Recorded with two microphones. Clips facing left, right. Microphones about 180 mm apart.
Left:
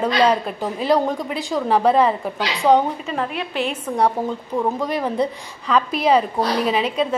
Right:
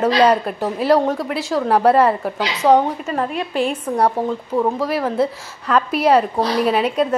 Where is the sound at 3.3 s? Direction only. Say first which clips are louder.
Right 4 dB; 40° right (ahead or behind).